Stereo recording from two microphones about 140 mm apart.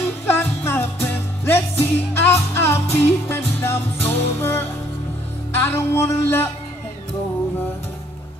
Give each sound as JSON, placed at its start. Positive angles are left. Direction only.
{"t": 0.3, "sound": "music", "side_deg": 15}